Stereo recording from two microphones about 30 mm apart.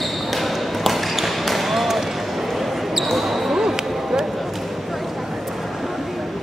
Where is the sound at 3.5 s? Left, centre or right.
Centre.